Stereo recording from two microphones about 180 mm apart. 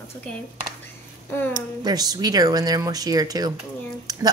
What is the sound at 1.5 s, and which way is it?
Speech, 20° right (ahead or behind).